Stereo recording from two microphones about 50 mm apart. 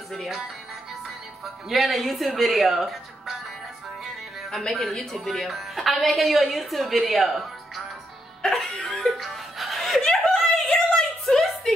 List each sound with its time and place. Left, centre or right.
1.4 s a woman's voice: centre
4.5 s a woman's voice: centre
8.4 s music: centre
10.0 s a sound: centre